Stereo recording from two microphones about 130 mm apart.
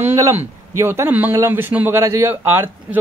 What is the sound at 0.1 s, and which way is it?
Speech, 20° right (ahead or behind).